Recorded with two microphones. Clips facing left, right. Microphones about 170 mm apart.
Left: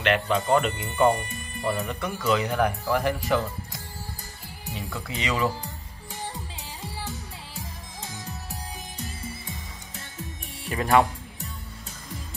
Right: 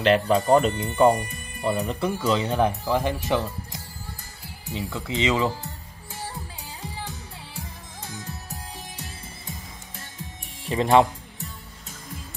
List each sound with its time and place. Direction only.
0.0 s speech: 35° right (ahead or behind)
1.6 s speech: 25° right (ahead or behind)
10.7 s speech: 20° right (ahead or behind)